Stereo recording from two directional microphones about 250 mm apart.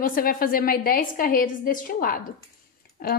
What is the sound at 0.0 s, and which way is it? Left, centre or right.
A woman's voice, left.